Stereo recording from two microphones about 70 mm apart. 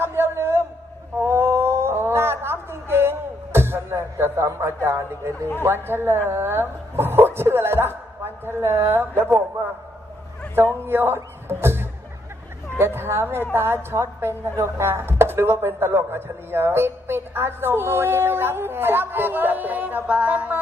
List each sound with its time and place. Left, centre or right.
0.0 s a sound: right
4.8 s a woman's voice: right
10.9 s a man's voice: right